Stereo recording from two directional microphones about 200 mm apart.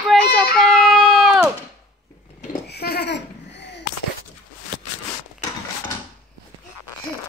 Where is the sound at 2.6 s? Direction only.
55° left (ahead or behind).